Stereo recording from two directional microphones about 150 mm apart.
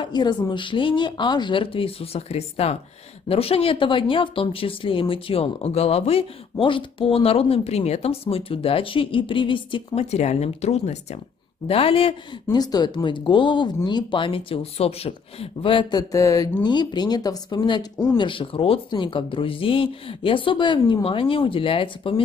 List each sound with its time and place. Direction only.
0.0 s speech: 30° left (ahead or behind)
10.1 s speech: 45° left (ahead or behind)
12.4 s speech: 25° left (ahead or behind)